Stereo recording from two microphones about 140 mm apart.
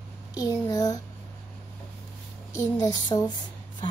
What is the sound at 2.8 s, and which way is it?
Speech, 30° left (ahead or behind).